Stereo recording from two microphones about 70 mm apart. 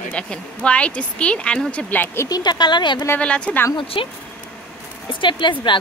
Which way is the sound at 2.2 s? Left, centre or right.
Left.